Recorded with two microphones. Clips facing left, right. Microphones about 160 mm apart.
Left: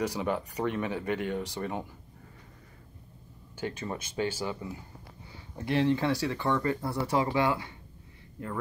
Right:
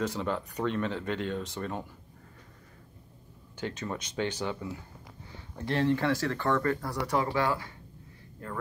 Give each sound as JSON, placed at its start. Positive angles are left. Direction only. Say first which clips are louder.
{"t": 0.0, "sound": "speech", "louder": "left 1 dB", "side_deg": 10}
{"t": 3.5, "sound": "speech", "louder": "even", "side_deg": 10}
{"t": 5.7, "sound": "speech", "louder": "left 1 dB", "side_deg": 15}